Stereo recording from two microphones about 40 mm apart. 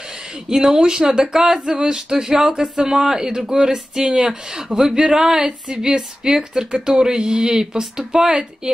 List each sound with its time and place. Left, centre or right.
0.5 s speech: centre